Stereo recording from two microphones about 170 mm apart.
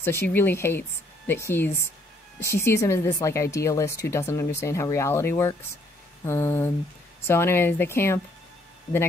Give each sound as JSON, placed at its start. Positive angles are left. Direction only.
{"t": 0.0, "sound": "speech", "side_deg": 15}